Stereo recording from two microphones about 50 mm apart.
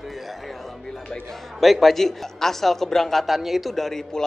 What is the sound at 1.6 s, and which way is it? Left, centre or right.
A man's voice, centre.